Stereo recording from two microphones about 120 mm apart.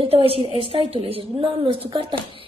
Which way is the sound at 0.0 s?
50° right (ahead or behind).